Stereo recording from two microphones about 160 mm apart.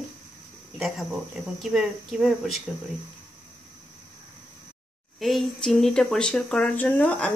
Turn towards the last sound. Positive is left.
turn(degrees=10)  # may be behind; listen again after turning